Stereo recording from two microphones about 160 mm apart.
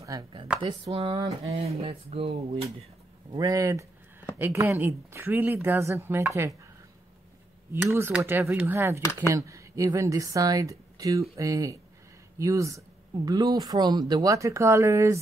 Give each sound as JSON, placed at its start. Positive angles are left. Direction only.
{"t": 0.9, "sound": "speech", "side_deg": -35}
{"t": 3.3, "sound": "speech", "side_deg": -20}
{"t": 7.7, "sound": "speech", "side_deg": -15}